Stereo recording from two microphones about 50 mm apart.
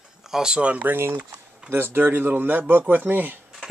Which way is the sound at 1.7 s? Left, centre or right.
Right.